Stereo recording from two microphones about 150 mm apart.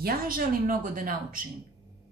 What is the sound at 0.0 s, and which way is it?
A woman's voice, 75° right (ahead or behind).